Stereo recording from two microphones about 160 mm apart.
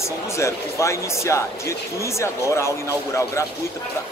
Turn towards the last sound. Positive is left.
turn(degrees=20)  # may be behind; listen again after turning